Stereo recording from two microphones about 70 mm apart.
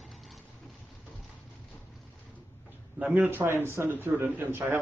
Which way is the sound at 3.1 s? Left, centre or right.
Right.